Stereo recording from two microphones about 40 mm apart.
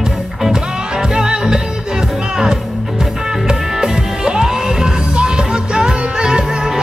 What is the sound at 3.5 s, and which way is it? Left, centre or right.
Music, centre.